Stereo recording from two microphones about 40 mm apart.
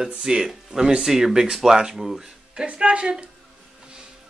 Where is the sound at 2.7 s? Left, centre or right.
Right.